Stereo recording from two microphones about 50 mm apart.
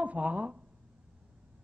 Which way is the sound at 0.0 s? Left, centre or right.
Right.